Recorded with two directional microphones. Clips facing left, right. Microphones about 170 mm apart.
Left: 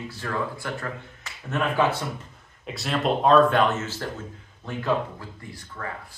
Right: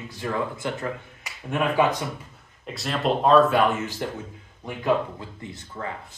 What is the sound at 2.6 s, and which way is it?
Speech, centre (ahead or behind).